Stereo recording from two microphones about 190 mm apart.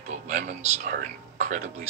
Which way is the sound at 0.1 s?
40° right (ahead or behind).